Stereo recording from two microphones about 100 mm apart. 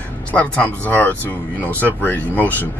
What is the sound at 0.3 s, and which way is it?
Speech, 15° left (ahead or behind).